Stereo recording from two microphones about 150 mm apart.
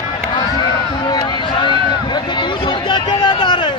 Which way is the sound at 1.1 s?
30° left (ahead or behind).